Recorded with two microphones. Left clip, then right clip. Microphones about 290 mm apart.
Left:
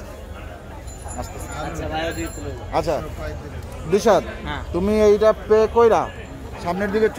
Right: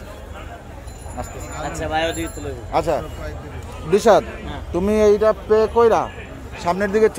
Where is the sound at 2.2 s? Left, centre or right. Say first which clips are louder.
Right 2 dB; centre.